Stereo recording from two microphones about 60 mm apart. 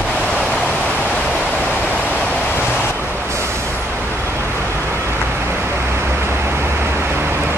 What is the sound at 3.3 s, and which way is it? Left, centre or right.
Vehicle, right.